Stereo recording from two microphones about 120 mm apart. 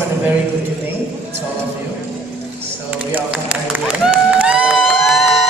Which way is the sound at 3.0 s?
10° right (ahead or behind).